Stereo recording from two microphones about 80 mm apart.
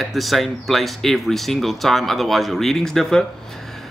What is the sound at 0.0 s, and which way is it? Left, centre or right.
Speech, centre.